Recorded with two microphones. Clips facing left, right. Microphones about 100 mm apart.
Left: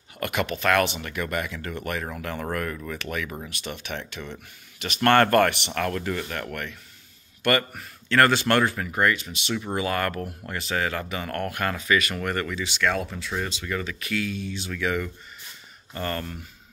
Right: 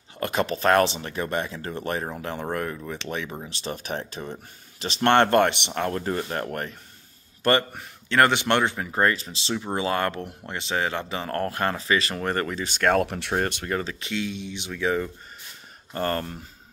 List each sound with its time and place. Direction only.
0.2 s speech: 30° right (ahead or behind)
13.0 s speech: 70° right (ahead or behind)
13.7 s speech: 35° right (ahead or behind)
15.9 s speech: 40° right (ahead or behind)